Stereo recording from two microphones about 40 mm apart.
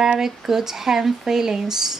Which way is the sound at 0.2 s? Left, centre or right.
Centre.